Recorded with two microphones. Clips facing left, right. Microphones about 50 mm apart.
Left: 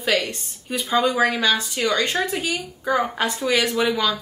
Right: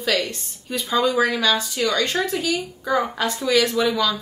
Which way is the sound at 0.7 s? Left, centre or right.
Left.